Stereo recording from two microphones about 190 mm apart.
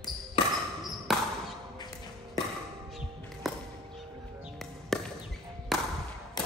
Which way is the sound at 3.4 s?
Centre (ahead or behind).